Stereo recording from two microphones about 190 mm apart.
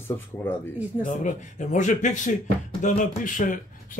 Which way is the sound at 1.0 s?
40° left (ahead or behind).